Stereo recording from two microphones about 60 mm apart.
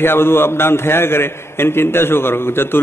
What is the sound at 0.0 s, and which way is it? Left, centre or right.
A man's voice, left.